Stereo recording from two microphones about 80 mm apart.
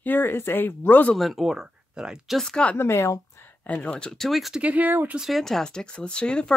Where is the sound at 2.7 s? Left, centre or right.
Left.